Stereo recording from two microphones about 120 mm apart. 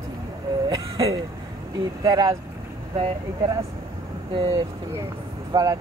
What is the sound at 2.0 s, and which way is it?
Speech, 30° right (ahead or behind).